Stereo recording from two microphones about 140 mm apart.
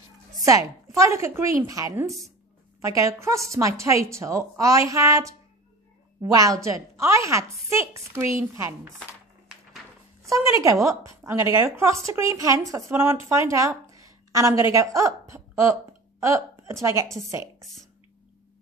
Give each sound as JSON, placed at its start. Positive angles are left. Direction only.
{"t": 0.5, "sound": "speech", "side_deg": -25}
{"t": 10.2, "sound": "speech", "side_deg": -20}